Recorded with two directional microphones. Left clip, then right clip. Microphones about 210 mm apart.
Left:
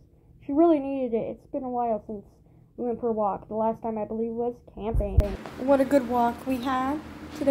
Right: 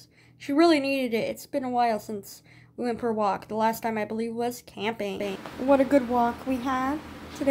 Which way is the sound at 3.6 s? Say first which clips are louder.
Right 3 dB; 10° right (ahead or behind).